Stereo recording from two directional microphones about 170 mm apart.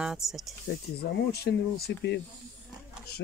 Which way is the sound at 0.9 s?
70° left (ahead or behind).